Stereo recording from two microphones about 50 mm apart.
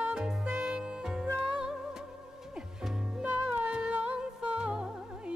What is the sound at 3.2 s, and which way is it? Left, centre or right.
Music, right.